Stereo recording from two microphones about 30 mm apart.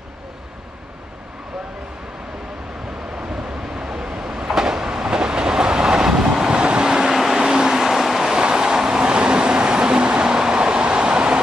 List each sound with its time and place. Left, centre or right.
3.6 s train: centre
6.5 s vehicle: right
7.0 s vehicle: centre
7.3 s vehicle: right
8.3 s vehicle: right